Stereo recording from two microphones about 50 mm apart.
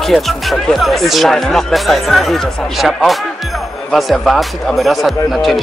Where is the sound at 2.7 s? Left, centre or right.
Centre.